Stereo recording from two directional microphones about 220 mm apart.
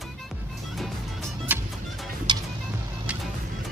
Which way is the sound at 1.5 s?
5° right (ahead or behind).